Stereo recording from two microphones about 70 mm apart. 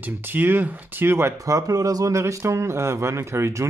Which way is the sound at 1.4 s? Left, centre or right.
Right.